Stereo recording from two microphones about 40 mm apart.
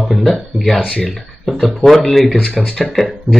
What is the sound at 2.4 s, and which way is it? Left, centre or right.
Speech, left.